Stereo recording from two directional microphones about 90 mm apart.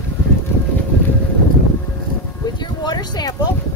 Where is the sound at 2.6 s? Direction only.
50° left (ahead or behind).